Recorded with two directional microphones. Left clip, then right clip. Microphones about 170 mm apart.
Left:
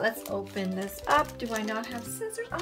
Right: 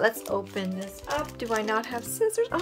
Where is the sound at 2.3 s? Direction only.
45° right (ahead or behind).